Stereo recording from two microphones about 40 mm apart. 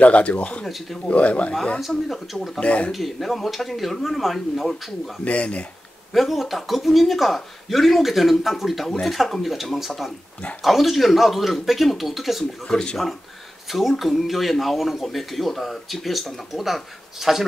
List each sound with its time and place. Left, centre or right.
0.0 s speech: left
0.7 s speech: centre
1.0 s speech: left
1.8 s speech: centre
2.6 s speech: left
2.9 s speech: centre
5.2 s speech: left
6.1 s speech: centre
12.6 s speech: left
13.7 s speech: centre